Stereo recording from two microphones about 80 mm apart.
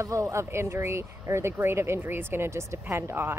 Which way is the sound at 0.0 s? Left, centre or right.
Right.